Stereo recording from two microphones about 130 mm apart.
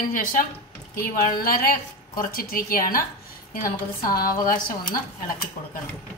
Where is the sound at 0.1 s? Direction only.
90° left.